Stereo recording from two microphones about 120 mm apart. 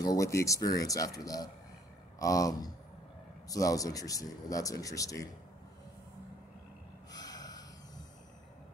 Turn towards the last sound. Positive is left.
turn(degrees=30)  # may be behind; listen again after turning